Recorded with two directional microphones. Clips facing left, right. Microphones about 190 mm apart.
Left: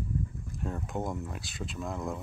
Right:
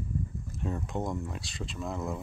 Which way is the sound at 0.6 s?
Centre (ahead or behind).